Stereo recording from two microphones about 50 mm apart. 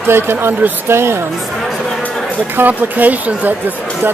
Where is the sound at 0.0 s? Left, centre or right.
Right.